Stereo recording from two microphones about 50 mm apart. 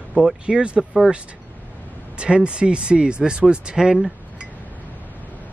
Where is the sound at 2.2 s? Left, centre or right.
Right.